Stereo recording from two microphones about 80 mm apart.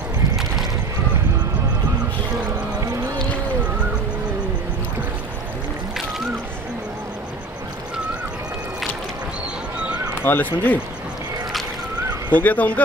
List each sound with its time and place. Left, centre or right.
10.2 s speech: left
12.4 s speech: centre